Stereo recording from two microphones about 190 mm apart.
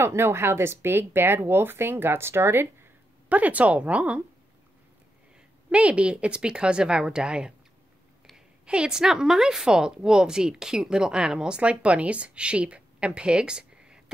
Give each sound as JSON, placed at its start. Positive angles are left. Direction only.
{"t": 0.0, "sound": "speech", "side_deg": -15}
{"t": 5.7, "sound": "a woman's voice", "side_deg": -5}